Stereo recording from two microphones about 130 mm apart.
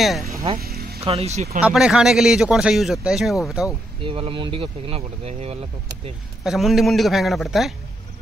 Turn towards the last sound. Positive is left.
turn(degrees=0)  # may be behind; listen again after turning